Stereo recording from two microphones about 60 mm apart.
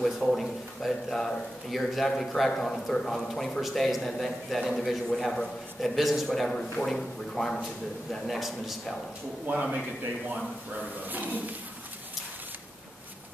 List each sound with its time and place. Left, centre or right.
0.0 s speech: centre
5.1 s speech: centre
7.6 s speech: centre
9.5 s a man's voice: centre
11.1 s speech: right